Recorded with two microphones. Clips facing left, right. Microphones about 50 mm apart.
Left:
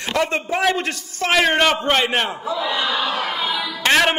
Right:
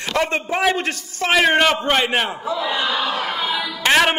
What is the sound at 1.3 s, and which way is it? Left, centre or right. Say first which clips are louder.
A man's voice: right 1 dB; centre.